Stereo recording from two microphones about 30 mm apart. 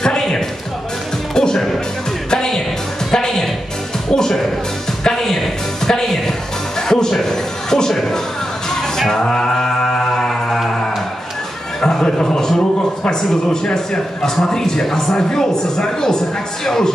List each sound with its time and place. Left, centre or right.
0.0 s music: left
7.2 s a sound: centre
8.6 s music: centre
9.2 s mantra: left
11.8 s a sound: left
13.5 s a man's voice: left